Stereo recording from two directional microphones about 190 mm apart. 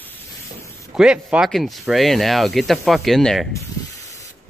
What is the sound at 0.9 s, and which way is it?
Speech, 5° right (ahead or behind).